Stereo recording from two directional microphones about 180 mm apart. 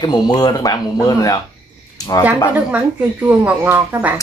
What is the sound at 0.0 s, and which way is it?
Speech, 20° left (ahead or behind).